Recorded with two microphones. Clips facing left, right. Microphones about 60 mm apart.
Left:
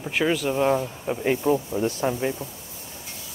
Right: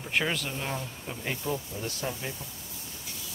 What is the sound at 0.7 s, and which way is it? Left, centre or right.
Speech, left.